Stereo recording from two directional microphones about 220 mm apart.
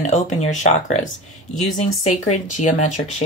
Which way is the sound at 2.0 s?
35° left (ahead or behind).